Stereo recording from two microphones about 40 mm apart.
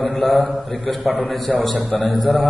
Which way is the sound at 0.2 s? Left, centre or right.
Centre.